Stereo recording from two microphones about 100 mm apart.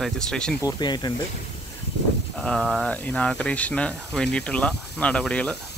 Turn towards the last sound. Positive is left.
turn(degrees=10)  # may be behind; listen again after turning